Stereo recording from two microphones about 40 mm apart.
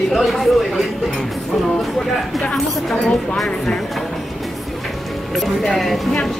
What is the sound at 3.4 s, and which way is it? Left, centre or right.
Speech, centre.